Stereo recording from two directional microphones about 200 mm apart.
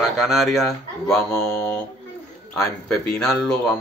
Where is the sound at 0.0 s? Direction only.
Centre (ahead or behind).